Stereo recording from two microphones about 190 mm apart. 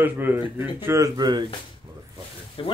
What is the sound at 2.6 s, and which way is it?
Speech, 25° left (ahead or behind).